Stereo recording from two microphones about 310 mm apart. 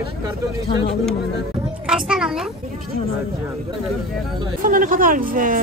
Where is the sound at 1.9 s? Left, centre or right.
Centre.